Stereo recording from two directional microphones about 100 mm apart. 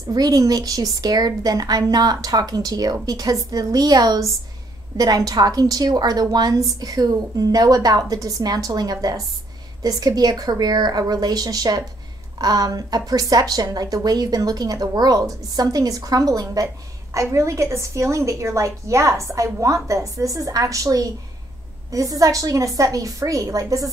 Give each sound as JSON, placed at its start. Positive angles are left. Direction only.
{"t": 0.1, "sound": "a woman's voice", "side_deg": -40}